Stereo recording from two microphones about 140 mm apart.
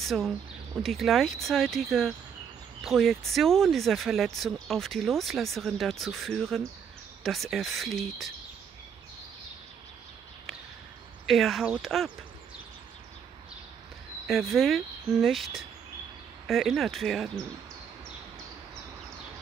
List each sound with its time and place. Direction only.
0.0 s speech: centre (ahead or behind)
11.2 s speech: centre (ahead or behind)
14.2 s speech: centre (ahead or behind)